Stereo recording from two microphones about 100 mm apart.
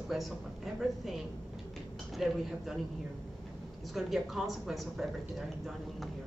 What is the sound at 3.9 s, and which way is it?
Speech, centre (ahead or behind).